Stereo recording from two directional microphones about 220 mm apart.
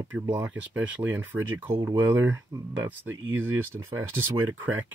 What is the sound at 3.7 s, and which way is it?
Speech, 10° right (ahead or behind).